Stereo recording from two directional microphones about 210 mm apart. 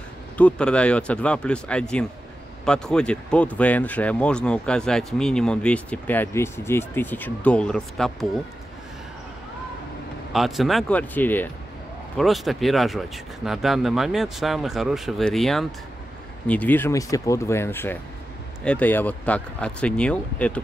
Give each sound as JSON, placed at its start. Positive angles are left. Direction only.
{"t": 0.4, "sound": "speech", "side_deg": 5}
{"t": 10.3, "sound": "speech", "side_deg": 0}